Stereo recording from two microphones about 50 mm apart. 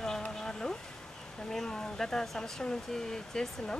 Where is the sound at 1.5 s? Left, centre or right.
Centre.